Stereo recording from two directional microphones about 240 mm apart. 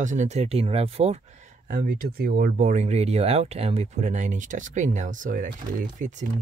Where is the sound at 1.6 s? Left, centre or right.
Right.